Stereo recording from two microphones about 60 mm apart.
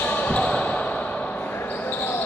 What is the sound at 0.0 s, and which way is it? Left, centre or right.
Basketball bounce, left.